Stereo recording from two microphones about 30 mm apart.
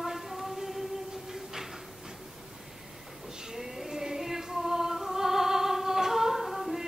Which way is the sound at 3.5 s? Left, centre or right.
Centre.